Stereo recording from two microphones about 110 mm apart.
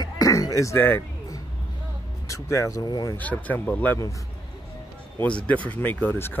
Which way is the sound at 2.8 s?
40° left (ahead or behind).